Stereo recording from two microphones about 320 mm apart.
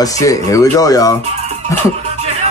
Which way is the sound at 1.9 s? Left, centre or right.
Centre.